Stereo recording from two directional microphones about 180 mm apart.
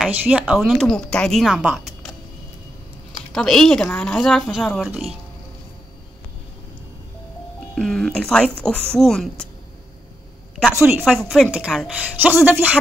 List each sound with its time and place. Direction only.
0.0 s a woman's voice: 10° right (ahead or behind)
3.3 s a woman's voice: centre (ahead or behind)
7.7 s a woman's voice: 5° left (ahead or behind)
10.7 s a woman's voice: 10° right (ahead or behind)
11.1 s a woman's voice: centre (ahead or behind)